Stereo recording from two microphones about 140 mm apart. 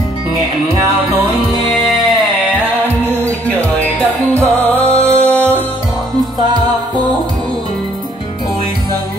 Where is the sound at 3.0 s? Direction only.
10° left (ahead or behind).